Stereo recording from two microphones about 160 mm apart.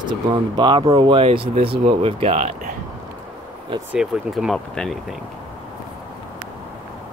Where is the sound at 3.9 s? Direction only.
5° right (ahead or behind).